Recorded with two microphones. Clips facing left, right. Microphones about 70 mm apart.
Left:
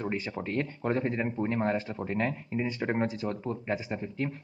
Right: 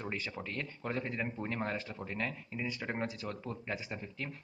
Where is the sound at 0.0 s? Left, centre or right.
Left.